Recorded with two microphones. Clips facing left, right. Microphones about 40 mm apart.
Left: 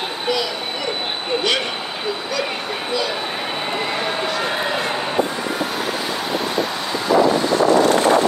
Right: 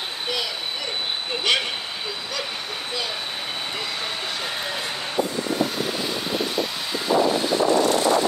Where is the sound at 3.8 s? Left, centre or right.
Left.